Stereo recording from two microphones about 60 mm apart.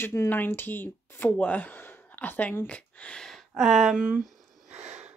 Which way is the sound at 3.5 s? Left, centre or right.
Centre.